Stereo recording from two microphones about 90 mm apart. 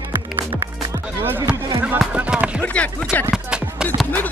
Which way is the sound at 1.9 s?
10° right (ahead or behind).